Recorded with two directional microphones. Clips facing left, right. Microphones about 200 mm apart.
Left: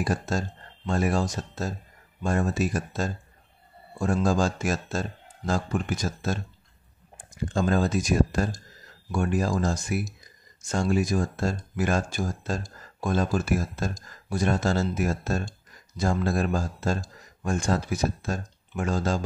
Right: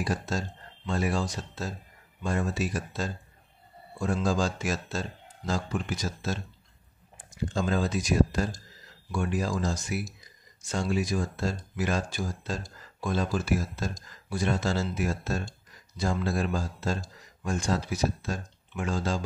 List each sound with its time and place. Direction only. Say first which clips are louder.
0.0 s speech: left 3 dB; 50° left (ahead or behind)